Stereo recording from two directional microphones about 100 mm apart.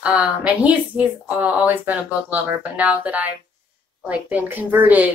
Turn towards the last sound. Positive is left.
turn(degrees=-15)  # may be behind; listen again after turning